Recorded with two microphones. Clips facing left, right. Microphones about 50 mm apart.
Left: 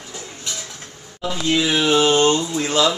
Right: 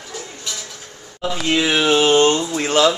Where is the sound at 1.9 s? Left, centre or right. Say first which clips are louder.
Right 1 dB; centre.